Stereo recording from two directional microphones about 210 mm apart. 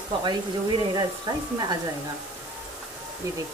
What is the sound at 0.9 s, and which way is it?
Speech, 20° right (ahead or behind).